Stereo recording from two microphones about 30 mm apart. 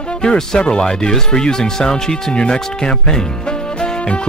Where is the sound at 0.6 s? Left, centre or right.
Left.